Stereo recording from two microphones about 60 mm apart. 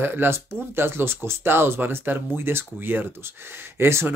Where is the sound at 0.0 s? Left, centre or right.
Right.